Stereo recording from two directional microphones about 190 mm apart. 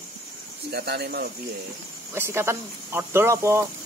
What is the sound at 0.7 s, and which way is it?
Speech, 60° right (ahead or behind).